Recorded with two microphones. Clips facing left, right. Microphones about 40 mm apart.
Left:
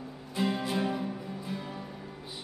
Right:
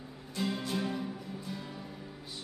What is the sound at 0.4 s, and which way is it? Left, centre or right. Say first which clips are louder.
Music: left 4 dB; centre.